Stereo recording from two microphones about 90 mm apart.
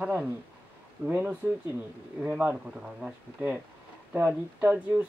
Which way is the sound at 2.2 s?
15° right (ahead or behind).